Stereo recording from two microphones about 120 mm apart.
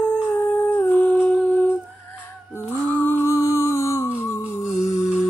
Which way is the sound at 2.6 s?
20° left (ahead or behind).